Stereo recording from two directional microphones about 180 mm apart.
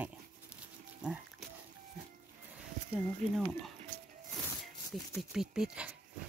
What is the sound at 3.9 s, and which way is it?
Music, 45° right (ahead or behind).